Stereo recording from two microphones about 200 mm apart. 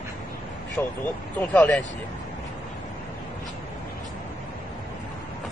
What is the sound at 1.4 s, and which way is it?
Speech, 10° left (ahead or behind).